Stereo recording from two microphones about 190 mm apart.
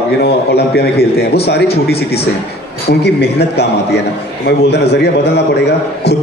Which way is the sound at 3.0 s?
60° left (ahead or behind).